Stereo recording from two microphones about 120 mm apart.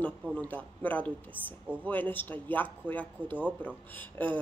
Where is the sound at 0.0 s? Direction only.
10° left (ahead or behind).